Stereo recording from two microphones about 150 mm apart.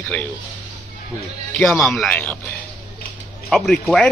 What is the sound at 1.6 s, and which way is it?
Speech, centre (ahead or behind).